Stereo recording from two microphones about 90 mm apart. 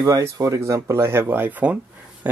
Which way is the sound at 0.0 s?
35° right (ahead or behind).